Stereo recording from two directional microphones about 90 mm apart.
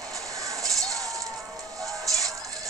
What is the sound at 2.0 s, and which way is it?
Music, 40° right (ahead or behind).